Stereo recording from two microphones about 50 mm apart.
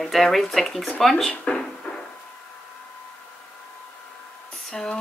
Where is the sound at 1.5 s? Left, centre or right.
Centre.